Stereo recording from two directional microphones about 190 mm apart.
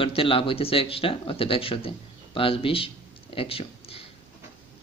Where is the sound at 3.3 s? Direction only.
30° left (ahead or behind).